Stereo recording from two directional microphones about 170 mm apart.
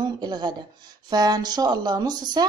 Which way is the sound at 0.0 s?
25° right (ahead or behind).